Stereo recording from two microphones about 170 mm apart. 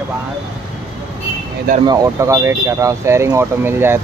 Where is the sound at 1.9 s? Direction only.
20° right (ahead or behind).